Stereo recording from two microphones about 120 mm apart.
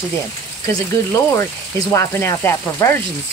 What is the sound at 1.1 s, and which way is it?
Speech, 25° left (ahead or behind).